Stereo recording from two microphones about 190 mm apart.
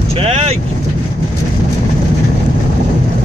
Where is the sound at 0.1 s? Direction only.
30° right (ahead or behind).